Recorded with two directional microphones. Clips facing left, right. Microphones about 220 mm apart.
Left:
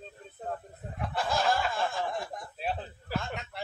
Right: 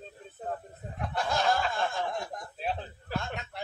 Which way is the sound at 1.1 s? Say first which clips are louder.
Even; centre (ahead or behind).